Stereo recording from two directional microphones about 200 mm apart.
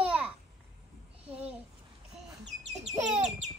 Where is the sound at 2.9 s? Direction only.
35° right (ahead or behind).